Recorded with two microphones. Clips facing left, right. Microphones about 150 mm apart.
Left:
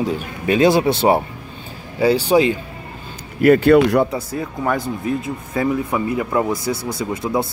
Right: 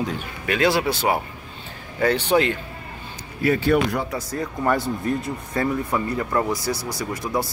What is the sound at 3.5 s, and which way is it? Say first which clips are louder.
Speech: left 8 dB; 60° left (ahead or behind).